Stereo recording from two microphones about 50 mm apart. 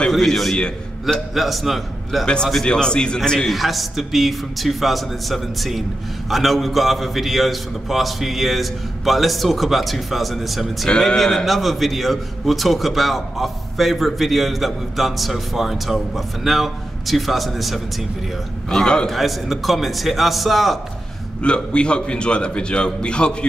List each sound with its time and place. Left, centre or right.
0.1 s a man's voice: centre
2.2 s a man's voice: centre
3.5 s a man's voice: centre
10.9 s a man's voice: centre
18.7 s a man's voice: centre
19.0 s a man's voice: centre
21.4 s a man's voice: centre